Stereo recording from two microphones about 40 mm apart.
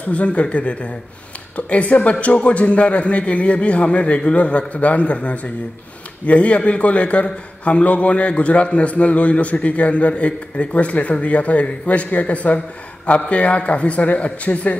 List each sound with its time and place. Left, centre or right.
0.1 s a man's voice: left